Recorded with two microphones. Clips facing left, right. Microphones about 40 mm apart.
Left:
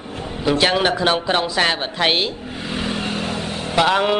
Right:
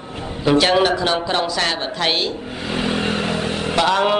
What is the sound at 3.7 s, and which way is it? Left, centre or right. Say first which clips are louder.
Speech: left 1 dB; centre.